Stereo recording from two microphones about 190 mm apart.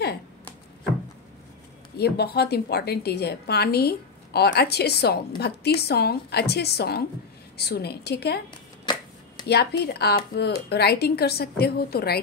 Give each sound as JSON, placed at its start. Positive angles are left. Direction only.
{"t": 2.0, "sound": "a woman's voice", "side_deg": 55}
{"t": 9.5, "sound": "a woman's voice", "side_deg": 60}